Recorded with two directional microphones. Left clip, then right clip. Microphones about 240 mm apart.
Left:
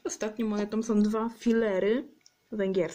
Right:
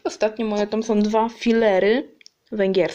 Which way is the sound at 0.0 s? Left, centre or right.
Left.